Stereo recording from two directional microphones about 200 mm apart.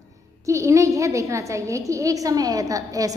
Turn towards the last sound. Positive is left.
turn(degrees=-15)  # may be behind; listen again after turning